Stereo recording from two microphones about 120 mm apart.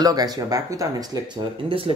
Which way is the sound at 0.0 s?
35° right (ahead or behind).